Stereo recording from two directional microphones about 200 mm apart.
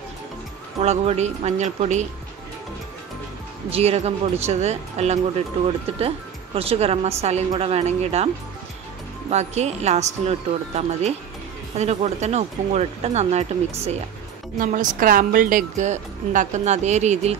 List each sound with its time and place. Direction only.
0.7 s speech: 30° right (ahead or behind)
3.7 s speech: 30° right (ahead or behind)
9.3 s speech: 35° right (ahead or behind)